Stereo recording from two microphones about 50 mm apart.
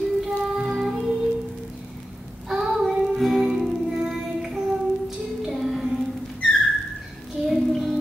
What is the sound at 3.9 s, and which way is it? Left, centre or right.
Music, centre.